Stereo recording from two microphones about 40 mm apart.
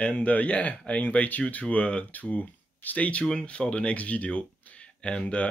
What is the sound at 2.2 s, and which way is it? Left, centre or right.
Speech, left.